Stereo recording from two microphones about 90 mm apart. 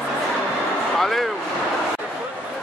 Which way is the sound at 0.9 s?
5° left (ahead or behind).